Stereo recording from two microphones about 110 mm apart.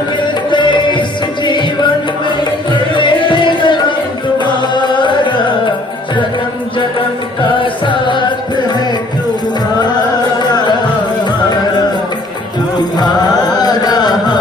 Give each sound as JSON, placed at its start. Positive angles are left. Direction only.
{"t": 0.5, "sound": "music", "side_deg": 45}
{"t": 3.0, "sound": "music", "side_deg": 45}
{"t": 13.0, "sound": "carnatic music", "side_deg": 40}